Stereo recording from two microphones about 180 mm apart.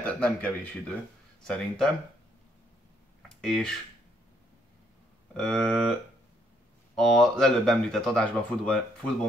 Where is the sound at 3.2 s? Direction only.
5° left (ahead or behind).